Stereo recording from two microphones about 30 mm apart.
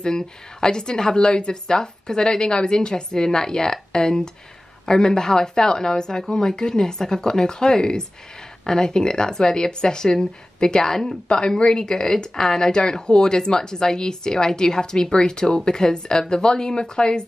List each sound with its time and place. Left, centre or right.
0.0 s speech: left